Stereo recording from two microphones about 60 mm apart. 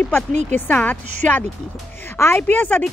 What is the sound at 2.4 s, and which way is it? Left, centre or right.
Speech, left.